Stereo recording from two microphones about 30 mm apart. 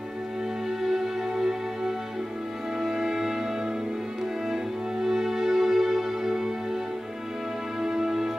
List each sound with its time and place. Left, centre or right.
0.7 s music: centre
7.8 s music: centre